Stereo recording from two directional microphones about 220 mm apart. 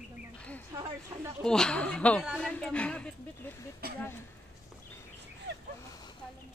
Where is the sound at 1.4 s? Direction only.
5° left (ahead or behind).